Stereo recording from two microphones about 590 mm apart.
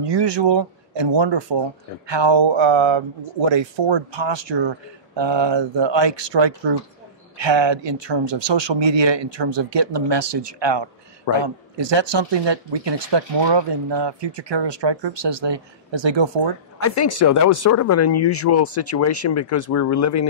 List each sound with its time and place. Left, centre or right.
0.0 s speech: right
16.8 s speech: left